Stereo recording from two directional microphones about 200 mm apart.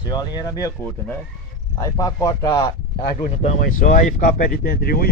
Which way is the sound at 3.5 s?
40° left (ahead or behind).